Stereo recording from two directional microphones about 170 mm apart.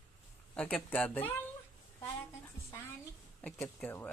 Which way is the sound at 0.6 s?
10° left (ahead or behind).